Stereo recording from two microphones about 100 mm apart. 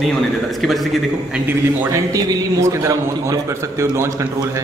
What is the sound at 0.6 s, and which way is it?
Speech, centre (ahead or behind).